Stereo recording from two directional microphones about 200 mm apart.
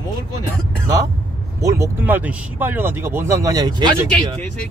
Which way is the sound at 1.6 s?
15° right (ahead or behind).